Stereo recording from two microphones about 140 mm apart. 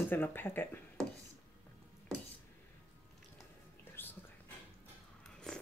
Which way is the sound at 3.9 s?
15° left (ahead or behind).